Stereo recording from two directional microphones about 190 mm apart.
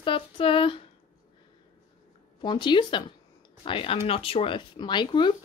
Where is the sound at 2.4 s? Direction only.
25° left (ahead or behind).